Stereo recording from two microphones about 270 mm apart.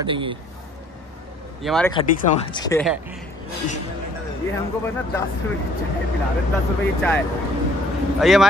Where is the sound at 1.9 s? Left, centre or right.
Centre.